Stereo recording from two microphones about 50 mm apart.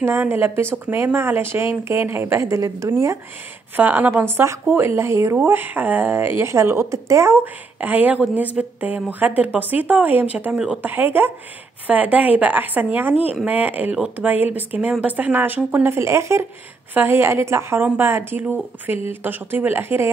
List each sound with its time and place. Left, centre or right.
0.2 s a woman's voice: right
3.7 s a woman's voice: right
7.4 s speech: right
10.8 s a woman's voice: right
11.9 s speech: right
16.0 s speech: right
16.9 s a woman's voice: right
17.9 s a woman's voice: right